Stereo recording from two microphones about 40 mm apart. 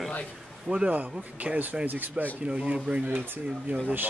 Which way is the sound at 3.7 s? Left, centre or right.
Right.